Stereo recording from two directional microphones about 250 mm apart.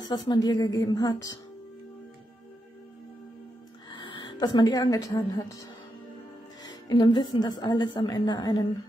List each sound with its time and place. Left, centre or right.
0.1 s a woman's voice: centre
3.9 s speech: centre
6.6 s a woman's voice: centre